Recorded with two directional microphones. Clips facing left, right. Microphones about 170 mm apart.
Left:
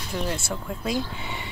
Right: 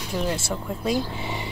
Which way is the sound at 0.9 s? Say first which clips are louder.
Right 2 dB; 30° right (ahead or behind).